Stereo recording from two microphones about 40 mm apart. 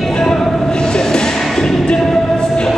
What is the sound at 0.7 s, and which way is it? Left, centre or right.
Train, centre.